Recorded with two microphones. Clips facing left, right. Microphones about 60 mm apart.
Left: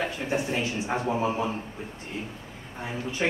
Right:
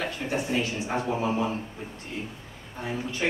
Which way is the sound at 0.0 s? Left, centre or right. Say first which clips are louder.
Left 1 dB; left.